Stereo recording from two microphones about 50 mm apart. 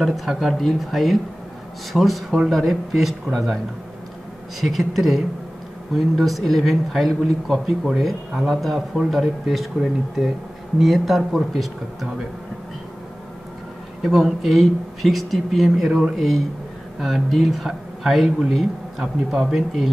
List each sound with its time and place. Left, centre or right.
0.1 s speech: centre
4.6 s speech: centre
14.0 s speech: centre